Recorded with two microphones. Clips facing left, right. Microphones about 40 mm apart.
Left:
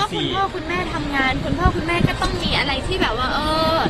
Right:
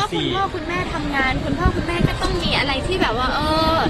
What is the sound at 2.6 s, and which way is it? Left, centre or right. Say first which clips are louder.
Speech: even; centre.